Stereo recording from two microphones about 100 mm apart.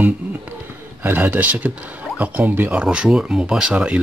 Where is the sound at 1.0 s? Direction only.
15° right (ahead or behind).